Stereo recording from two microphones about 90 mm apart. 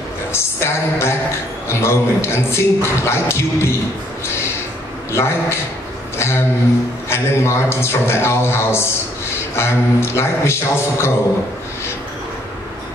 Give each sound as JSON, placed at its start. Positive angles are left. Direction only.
{"t": 0.3, "sound": "a man's voice", "side_deg": 30}
{"t": 5.1, "sound": "a man's voice", "side_deg": 30}